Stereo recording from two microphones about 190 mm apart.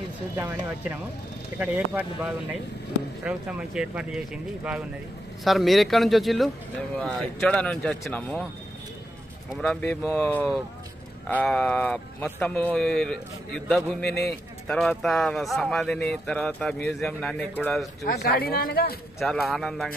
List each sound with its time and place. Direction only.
0.4 s a man's voice: 10° right (ahead or behind); by 8.5 s 5° left (ahead or behind)
9.6 s a man's voice: 5° left (ahead or behind)
18.0 s speech: 50° left (ahead or behind)
19.1 s a man's voice: centre (ahead or behind)